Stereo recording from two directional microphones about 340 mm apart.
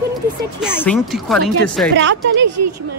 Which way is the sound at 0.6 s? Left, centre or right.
Centre.